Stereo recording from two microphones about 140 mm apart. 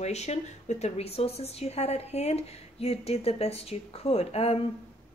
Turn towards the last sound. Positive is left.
turn(degrees=45)  # may be behind; listen again after turning